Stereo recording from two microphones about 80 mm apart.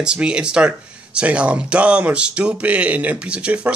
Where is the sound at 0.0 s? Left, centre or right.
Centre.